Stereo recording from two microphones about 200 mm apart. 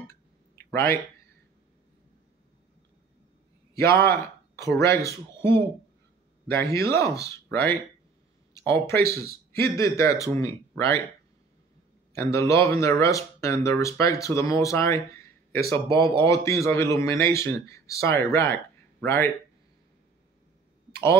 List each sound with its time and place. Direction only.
0.6 s a sound: 10° left (ahead or behind)
3.7 s speech: 15° left (ahead or behind)
12.1 s speech: 15° left (ahead or behind)
20.9 s speech: 15° left (ahead or behind)